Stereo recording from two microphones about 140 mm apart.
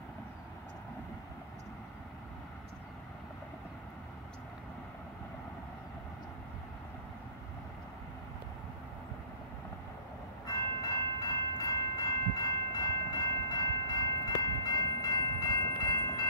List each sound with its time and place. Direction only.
10.4 s train: 25° left (ahead or behind)